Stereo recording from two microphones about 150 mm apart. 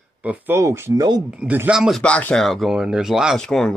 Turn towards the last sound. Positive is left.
turn(degrees=5)  # may be behind; listen again after turning